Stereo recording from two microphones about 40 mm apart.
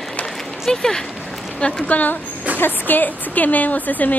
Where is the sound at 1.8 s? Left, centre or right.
Left.